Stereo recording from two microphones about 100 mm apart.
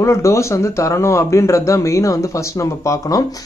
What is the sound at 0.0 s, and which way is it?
A man's voice, 30° left (ahead or behind).